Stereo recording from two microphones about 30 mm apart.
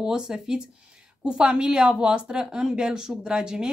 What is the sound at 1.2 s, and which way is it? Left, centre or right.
Speech, right.